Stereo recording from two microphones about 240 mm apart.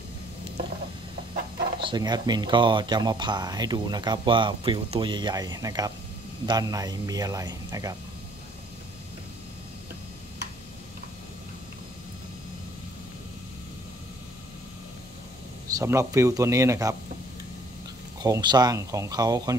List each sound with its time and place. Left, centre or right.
1.8 s speech: centre
15.8 s speech: centre
18.2 s speech: centre